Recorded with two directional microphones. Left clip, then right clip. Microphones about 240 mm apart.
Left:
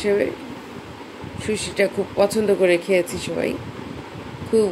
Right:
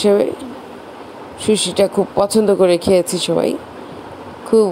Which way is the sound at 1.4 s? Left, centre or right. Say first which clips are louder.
Right 7 dB; right.